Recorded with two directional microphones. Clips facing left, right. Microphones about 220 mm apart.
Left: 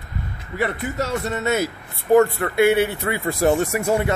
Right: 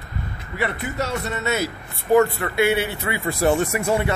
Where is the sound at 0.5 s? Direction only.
45° left (ahead or behind).